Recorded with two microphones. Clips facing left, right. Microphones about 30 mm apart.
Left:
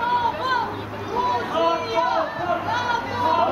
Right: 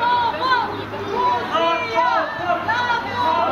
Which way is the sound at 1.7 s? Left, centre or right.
Right.